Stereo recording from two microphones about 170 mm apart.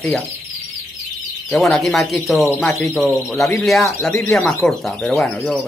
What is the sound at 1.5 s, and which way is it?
Speech, centre (ahead or behind).